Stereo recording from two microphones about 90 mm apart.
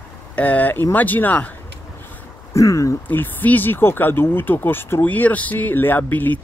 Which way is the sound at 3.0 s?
20° left (ahead or behind).